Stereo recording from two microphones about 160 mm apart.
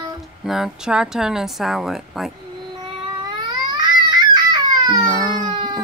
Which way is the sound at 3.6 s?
25° right (ahead or behind).